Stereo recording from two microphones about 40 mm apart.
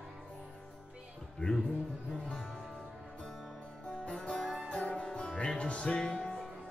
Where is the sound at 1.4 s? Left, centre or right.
Left.